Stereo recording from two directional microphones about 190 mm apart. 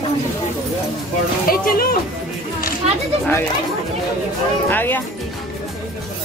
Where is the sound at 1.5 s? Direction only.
50° left (ahead or behind).